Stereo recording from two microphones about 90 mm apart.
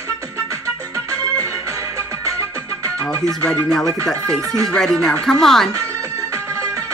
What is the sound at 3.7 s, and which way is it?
A woman's voice, 5° left (ahead or behind).